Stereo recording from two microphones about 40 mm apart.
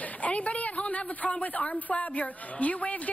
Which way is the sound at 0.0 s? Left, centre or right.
Left.